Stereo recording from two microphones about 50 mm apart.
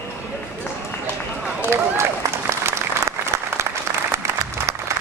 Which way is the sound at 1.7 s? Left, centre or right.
Right.